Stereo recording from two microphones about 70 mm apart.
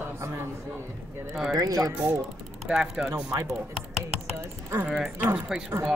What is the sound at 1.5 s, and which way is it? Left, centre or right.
Speech, right.